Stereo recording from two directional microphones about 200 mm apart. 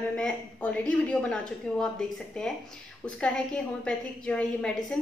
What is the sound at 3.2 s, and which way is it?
A woman's voice, 5° left (ahead or behind).